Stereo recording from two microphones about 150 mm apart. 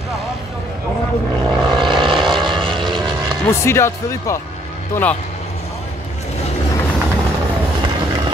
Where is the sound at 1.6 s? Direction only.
30° right (ahead or behind).